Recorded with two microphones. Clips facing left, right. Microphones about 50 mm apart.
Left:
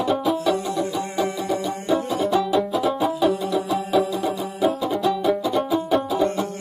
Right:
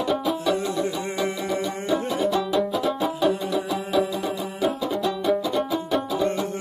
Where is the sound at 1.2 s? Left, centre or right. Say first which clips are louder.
Left 1 dB; right.